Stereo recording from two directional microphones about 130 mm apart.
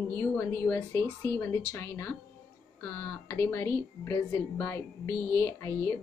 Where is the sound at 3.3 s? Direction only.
15° left (ahead or behind).